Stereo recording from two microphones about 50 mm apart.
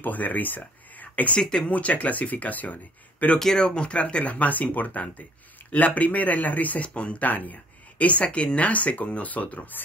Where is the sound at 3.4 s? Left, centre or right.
Centre.